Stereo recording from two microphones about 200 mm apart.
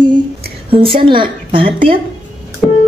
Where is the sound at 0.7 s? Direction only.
25° right (ahead or behind).